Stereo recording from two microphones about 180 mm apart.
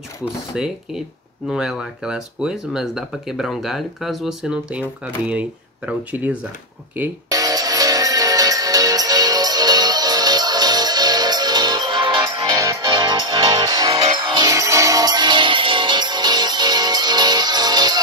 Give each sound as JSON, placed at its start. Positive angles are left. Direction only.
{"t": 0.5, "sound": "speech", "side_deg": -5}
{"t": 7.2, "sound": "music", "side_deg": -20}